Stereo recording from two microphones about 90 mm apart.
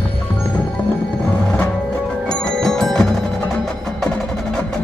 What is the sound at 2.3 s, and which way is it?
Music, 5° left (ahead or behind).